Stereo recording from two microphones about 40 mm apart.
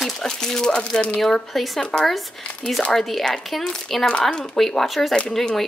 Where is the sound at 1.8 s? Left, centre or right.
Centre.